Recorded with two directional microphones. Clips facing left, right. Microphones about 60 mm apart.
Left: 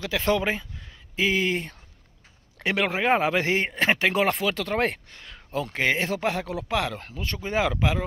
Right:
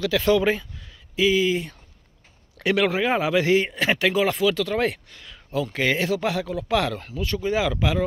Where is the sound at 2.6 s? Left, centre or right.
Left.